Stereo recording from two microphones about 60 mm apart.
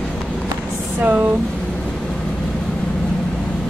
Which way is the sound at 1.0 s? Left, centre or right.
Right.